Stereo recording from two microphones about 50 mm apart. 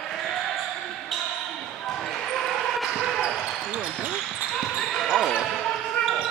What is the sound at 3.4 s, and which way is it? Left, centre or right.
Basketball bounce, right.